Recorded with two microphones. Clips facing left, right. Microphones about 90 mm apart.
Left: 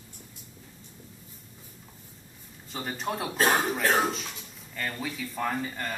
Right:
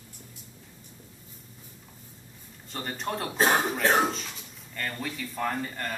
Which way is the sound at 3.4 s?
20° right (ahead or behind).